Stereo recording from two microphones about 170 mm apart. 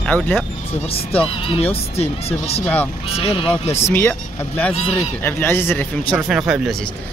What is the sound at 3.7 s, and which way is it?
Speech, 15° left (ahead or behind).